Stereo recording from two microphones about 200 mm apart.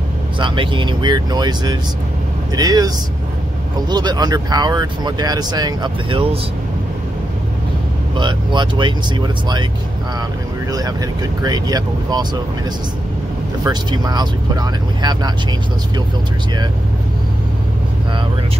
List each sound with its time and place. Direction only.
0.4 s speech: 25° right (ahead or behind)
3.9 s speech: 20° right (ahead or behind)
8.2 s speech: 25° right (ahead or behind)
10.7 s speech: 20° right (ahead or behind)
13.7 s speech: 20° right (ahead or behind)